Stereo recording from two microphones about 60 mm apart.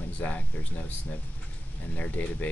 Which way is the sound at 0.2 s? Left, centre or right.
Left.